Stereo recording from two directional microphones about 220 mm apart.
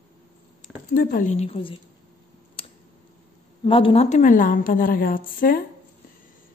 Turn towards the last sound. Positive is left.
turn(degrees=40)  # may be behind; listen again after turning